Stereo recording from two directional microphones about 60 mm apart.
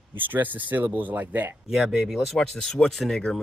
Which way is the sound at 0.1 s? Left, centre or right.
Right.